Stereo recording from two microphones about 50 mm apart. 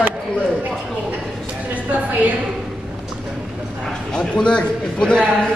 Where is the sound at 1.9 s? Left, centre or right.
Right.